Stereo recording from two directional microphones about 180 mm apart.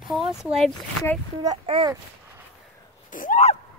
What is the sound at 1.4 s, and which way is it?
Speech, 25° right (ahead or behind).